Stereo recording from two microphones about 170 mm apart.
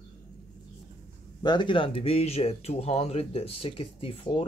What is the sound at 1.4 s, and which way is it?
Speech, 25° left (ahead or behind).